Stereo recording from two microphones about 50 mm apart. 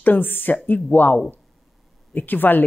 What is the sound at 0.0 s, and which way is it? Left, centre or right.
Speech, left.